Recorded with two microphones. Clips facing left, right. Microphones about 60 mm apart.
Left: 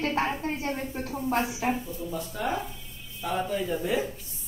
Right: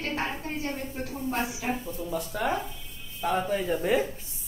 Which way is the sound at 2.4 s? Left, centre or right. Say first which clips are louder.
Right 2 dB; right.